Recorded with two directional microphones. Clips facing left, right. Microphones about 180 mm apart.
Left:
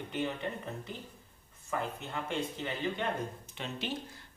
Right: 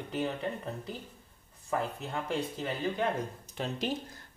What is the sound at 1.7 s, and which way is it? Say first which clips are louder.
Speech: right 3 dB; 35° right (ahead or behind).